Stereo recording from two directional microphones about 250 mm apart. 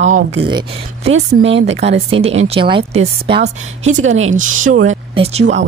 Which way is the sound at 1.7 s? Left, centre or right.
Right.